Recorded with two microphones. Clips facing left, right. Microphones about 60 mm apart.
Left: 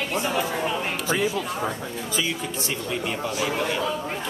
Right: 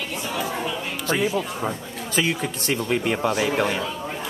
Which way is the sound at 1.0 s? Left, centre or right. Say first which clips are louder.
Right 4 dB; right.